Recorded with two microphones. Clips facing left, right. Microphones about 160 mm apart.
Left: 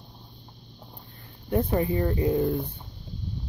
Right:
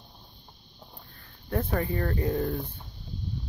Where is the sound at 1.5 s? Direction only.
15° left (ahead or behind).